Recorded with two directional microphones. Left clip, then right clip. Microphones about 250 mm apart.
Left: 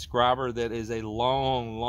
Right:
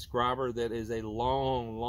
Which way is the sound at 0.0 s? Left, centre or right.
Left.